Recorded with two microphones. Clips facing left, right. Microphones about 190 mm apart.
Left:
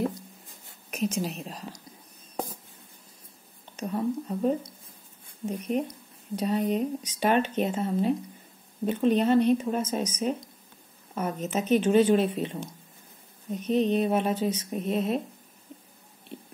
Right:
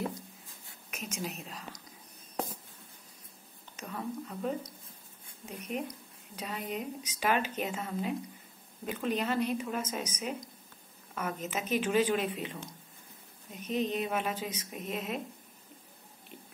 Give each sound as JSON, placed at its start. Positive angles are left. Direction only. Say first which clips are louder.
{"t": 0.8, "sound": "a woman's voice", "louder": "left 10 dB", "side_deg": 35}
{"t": 3.8, "sound": "speech", "louder": "left 9 dB", "side_deg": 30}
{"t": 13.5, "sound": "speech", "louder": "left 8 dB", "side_deg": 35}